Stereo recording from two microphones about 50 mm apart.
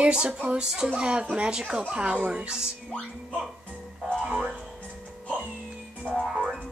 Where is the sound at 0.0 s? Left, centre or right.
Right.